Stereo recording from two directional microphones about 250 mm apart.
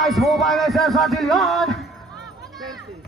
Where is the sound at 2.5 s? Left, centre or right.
Centre.